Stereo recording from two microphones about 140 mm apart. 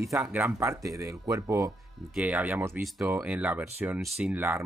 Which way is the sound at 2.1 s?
10° right (ahead or behind).